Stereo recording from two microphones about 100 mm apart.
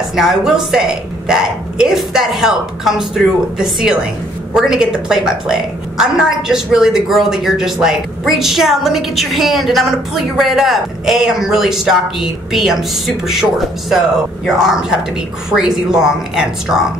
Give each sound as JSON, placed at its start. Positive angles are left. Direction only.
{"t": 0.1, "sound": "a woman's voice", "side_deg": -5}